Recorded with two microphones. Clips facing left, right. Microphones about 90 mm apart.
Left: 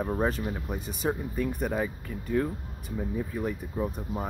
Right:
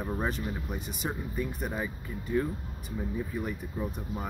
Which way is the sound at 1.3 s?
55° left (ahead or behind).